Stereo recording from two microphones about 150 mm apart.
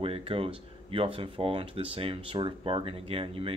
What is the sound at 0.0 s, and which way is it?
Speech, 40° right (ahead or behind).